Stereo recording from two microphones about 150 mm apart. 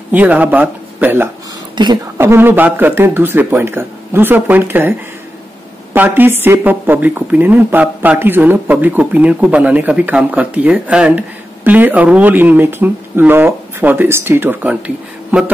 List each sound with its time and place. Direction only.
0.1 s speech: 10° right (ahead or behind)
1.8 s a woman's voice: 30° right (ahead or behind)
2.1 s speech: 15° right (ahead or behind)
5.9 s speech: 15° right (ahead or behind)